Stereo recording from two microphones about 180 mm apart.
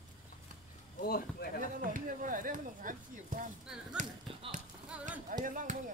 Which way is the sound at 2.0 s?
50° right (ahead or behind).